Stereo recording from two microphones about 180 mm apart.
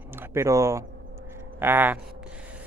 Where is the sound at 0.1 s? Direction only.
15° right (ahead or behind).